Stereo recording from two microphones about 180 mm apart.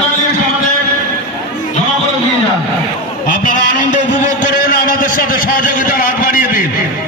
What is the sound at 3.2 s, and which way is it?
A man's voice, 45° left (ahead or behind).